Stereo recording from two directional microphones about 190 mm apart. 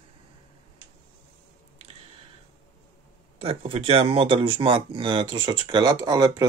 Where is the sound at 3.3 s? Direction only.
30° right (ahead or behind).